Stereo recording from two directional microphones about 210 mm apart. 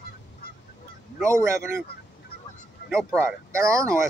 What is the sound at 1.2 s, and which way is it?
Speech, 15° right (ahead or behind).